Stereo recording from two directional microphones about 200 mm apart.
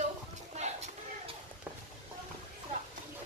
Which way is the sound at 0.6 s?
35° right (ahead or behind).